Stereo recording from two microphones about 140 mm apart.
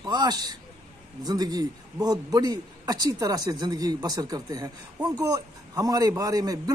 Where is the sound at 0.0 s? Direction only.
30° right (ahead or behind).